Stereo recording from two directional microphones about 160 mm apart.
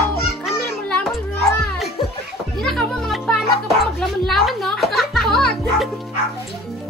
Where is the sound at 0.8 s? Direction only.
5° left (ahead or behind).